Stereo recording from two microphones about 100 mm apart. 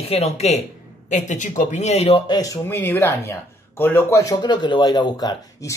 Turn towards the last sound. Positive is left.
turn(degrees=30)  # may be behind; listen again after turning